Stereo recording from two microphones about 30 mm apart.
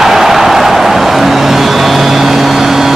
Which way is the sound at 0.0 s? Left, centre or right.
Centre.